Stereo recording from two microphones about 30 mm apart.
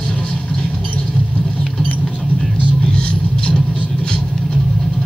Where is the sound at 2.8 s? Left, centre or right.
Left.